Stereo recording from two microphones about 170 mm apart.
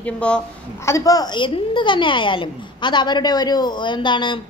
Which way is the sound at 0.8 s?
20° left (ahead or behind).